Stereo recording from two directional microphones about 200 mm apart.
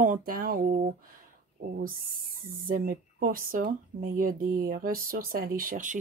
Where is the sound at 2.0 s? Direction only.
45° right (ahead or behind).